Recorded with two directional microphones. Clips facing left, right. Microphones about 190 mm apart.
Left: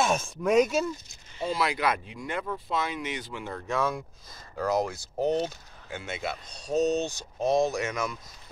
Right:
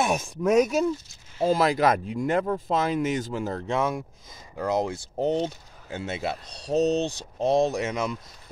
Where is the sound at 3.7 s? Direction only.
20° right (ahead or behind).